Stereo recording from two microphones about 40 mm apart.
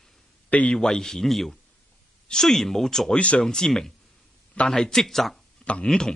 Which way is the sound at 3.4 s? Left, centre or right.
Centre.